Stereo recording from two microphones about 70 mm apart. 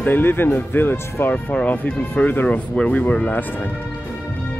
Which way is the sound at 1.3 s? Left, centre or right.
Centre.